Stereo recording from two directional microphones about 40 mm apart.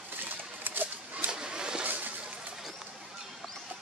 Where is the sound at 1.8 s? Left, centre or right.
Right.